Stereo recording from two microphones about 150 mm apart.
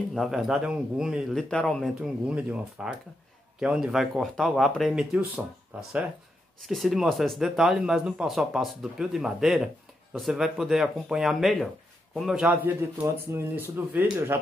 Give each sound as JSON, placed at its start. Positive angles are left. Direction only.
{"t": 0.1, "sound": "speech", "side_deg": 0}
{"t": 6.6, "sound": "speech", "side_deg": 0}